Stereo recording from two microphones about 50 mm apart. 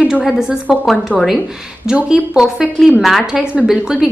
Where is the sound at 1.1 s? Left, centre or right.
Left.